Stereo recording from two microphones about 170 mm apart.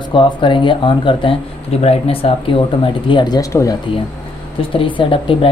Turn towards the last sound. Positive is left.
turn(degrees=30)  # may be behind; listen again after turning